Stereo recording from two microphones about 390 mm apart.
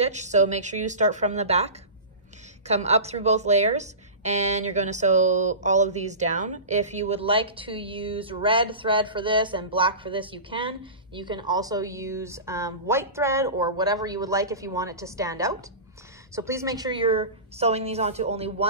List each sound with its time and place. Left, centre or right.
0.0 s speech: centre
2.7 s speech: centre